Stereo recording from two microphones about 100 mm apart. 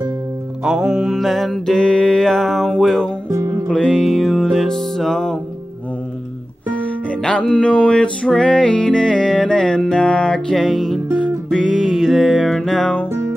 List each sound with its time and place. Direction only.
0.7 s music: 5° right (ahead or behind)
3.3 s music: 35° right (ahead or behind)
3.6 s music: 5° left (ahead or behind)
7.2 s music: 10° left (ahead or behind)